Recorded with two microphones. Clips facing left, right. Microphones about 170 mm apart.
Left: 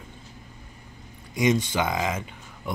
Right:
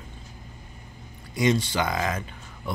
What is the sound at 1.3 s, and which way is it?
Speech, 20° left (ahead or behind).